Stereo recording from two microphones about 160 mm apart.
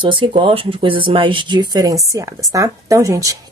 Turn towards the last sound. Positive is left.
turn(degrees=-20)  # may be behind; listen again after turning